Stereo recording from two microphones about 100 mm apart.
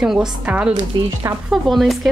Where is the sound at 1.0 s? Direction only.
50° right (ahead or behind).